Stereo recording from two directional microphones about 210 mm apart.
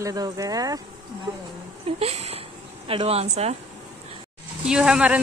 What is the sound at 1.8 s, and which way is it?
A woman's voice, 30° right (ahead or behind).